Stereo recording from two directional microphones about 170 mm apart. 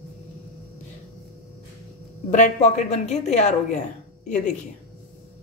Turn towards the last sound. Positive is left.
turn(degrees=45)  # may be behind; listen again after turning